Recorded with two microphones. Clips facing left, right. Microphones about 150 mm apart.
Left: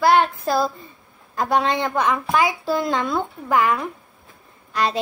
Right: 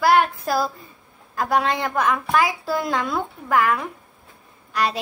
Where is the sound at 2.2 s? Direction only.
20° left (ahead or behind).